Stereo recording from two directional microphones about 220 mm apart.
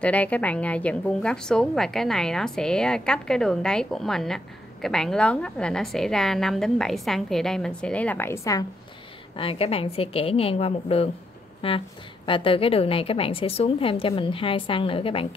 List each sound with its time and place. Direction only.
0.0 s a woman's voice: 5° left (ahead or behind)
9.4 s a woman's voice: 25° left (ahead or behind)